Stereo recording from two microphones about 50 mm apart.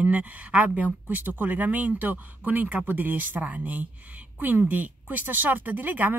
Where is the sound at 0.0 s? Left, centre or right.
Right.